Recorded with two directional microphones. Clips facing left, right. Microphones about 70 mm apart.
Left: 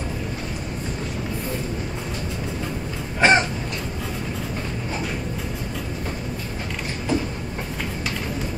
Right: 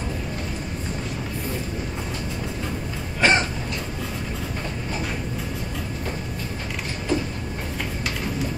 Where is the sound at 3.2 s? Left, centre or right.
Left.